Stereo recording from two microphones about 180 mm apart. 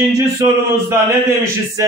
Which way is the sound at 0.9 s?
15° right (ahead or behind).